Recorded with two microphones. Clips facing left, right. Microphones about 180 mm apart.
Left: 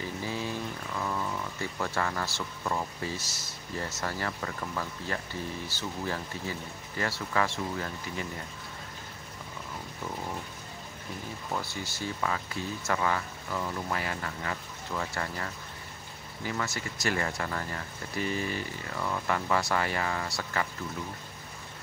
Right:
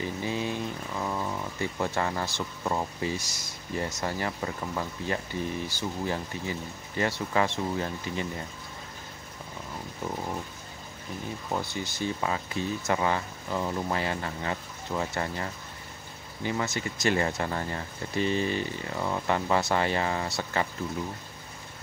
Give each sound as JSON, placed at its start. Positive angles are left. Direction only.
{"t": 0.0, "sound": "a sound", "side_deg": -20}
{"t": 3.7, "sound": "speech", "side_deg": -20}
{"t": 11.5, "sound": "speech", "side_deg": -20}